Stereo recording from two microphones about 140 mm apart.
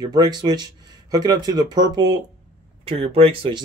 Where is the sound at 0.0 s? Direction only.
30° right (ahead or behind).